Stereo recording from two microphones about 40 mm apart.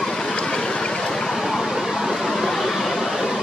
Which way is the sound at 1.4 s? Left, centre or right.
Centre.